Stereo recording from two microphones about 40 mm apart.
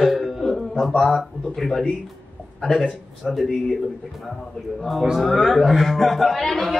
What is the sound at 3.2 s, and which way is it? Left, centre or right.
Speech, centre.